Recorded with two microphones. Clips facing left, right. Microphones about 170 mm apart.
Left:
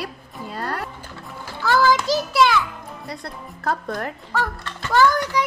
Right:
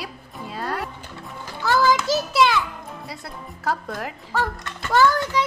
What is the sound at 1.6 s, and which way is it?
A child's voice, 20° right (ahead or behind).